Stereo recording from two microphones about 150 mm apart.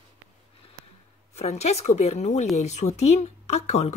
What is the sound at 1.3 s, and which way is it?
Speech, 45° left (ahead or behind).